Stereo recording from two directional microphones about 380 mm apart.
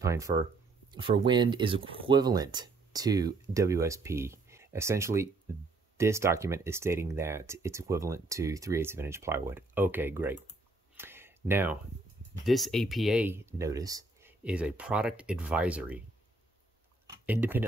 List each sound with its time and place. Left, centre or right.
0.0 s speech: centre
11.0 s a sound: centre
12.4 s speech: centre
17.1 s speech: centre